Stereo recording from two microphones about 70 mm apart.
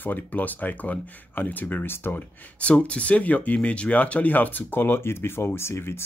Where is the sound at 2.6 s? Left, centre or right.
Centre.